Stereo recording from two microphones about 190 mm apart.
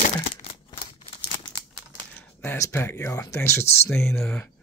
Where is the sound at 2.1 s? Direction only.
10° left (ahead or behind).